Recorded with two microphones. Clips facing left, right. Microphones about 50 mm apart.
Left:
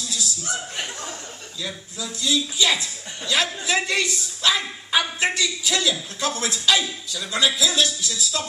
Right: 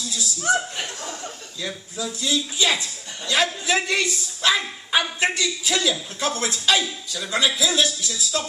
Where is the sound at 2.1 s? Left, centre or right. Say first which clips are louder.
Left 2 dB; right.